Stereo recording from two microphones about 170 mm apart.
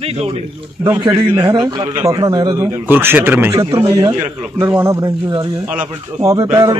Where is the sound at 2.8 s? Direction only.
10° right (ahead or behind).